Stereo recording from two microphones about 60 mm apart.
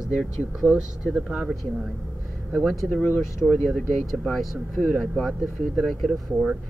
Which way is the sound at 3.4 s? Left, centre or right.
Centre.